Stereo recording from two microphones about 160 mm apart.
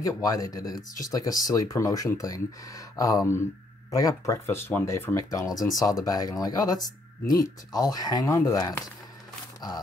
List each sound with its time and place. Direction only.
0.0 s speech: 20° left (ahead or behind)